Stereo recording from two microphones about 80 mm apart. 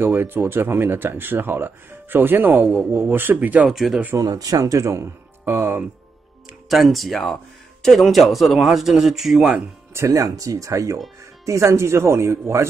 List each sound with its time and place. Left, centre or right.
0.0 s speech: right
3.6 s speech: centre
4.2 s speech: right
6.7 s speech: centre
9.9 s speech: right